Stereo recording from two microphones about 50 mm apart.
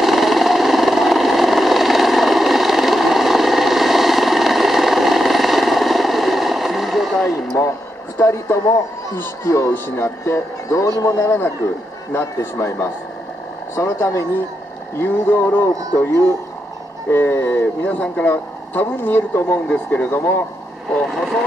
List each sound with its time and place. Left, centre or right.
0.0 s vehicle: centre
7.6 s a sound: left
8.2 s a man's voice: left
9.4 s speech: left
9.7 s speech: left
13.7 s speech: left
15.2 s speech: left
15.6 s speech: left
17.8 s speech: left
18.3 s speech: left
21.0 s speech: centre